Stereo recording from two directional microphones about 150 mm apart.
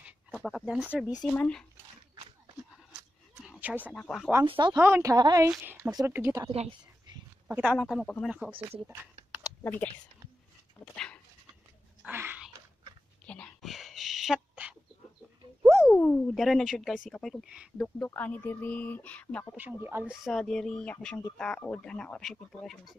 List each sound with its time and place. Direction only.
0.0 s speech: centre (ahead or behind)
3.6 s speech: 10° right (ahead or behind)
3.9 s speech: 5° left (ahead or behind)
4.5 s speech: 30° right (ahead or behind)
4.7 s a woman's voice: 15° right (ahead or behind)
5.6 s a woman's voice: 15° right (ahead or behind)
7.7 s speech: 5° left (ahead or behind)
9.6 s speech: 10° left (ahead or behind)
12.1 s dog: 15° right (ahead or behind)
13.3 s a sound: 5° left (ahead or behind); by 15.9 s 15° right (ahead or behind)
15.9 s speech: 10° left (ahead or behind)
17.7 s speech: 10° left (ahead or behind)
19.5 s speech: 15° right (ahead or behind)